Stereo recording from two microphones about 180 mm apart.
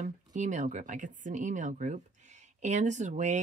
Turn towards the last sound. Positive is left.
turn(degrees=-40)  # may be behind; listen again after turning